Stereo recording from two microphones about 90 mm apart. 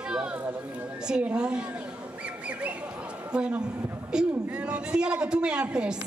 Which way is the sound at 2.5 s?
15° right (ahead or behind).